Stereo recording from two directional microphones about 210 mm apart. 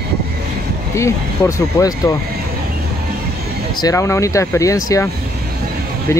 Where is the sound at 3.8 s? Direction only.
15° left (ahead or behind).